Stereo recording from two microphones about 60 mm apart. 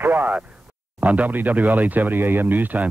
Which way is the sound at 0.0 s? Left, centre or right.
Right.